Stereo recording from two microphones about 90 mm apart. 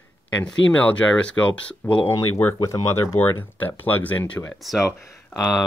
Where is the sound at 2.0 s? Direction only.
30° left (ahead or behind).